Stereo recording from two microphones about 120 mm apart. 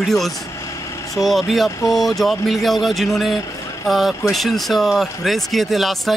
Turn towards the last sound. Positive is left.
turn(degrees=0)  # may be behind; listen again after turning